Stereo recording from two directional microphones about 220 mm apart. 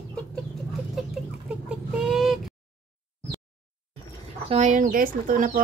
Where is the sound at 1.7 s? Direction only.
Centre (ahead or behind).